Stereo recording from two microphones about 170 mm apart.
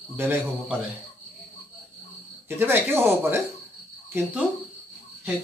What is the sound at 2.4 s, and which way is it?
Speech, 15° right (ahead or behind).